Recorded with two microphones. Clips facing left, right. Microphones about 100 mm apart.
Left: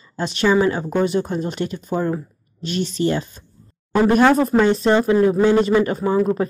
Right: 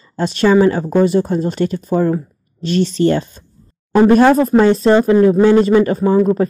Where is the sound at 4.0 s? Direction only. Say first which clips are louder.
Right 5 dB; 30° right (ahead or behind).